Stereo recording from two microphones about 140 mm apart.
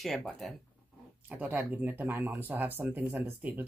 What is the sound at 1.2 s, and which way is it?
Speech, 10° right (ahead or behind).